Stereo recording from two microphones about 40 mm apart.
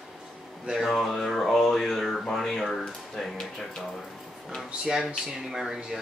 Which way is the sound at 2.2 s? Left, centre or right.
Centre.